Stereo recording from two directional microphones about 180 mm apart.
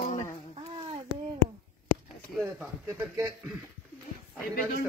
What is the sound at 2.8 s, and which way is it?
Speech, 15° right (ahead or behind).